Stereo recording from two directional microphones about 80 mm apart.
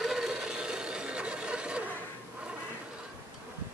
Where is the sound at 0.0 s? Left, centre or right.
Centre.